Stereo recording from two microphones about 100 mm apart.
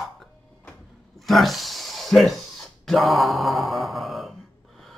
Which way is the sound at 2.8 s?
Centre (ahead or behind).